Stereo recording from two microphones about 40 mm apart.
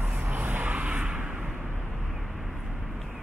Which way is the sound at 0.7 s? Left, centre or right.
Right.